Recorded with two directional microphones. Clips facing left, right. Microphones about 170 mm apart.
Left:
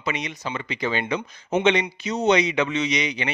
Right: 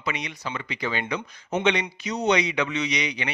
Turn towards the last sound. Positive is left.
turn(degrees=25)  # may be behind; listen again after turning